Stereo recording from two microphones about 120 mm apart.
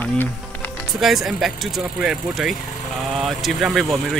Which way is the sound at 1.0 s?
Centre (ahead or behind).